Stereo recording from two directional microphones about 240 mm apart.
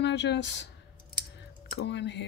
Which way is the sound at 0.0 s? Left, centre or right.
Left.